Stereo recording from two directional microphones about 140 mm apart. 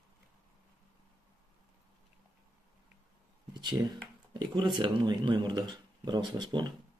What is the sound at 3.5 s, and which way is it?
Speech, 30° right (ahead or behind).